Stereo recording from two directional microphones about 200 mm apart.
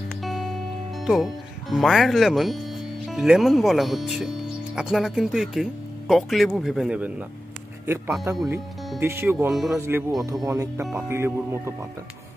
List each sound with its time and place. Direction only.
0.2 s a man's voice: centre (ahead or behind)
8.4 s speech: centre (ahead or behind)
9.0 s speech: 10° right (ahead or behind)